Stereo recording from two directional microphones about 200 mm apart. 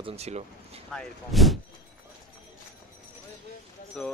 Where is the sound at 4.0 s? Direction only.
5° left (ahead or behind).